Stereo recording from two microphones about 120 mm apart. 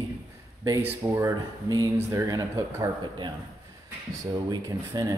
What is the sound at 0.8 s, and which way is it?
Speech, 15° right (ahead or behind).